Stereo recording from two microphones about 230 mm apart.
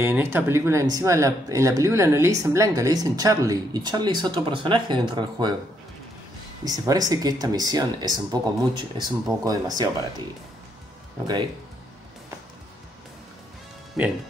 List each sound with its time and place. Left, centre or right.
0.0 s speech: centre
6.6 s speech: centre